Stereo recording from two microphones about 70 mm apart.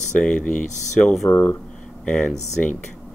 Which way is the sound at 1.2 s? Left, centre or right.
Left.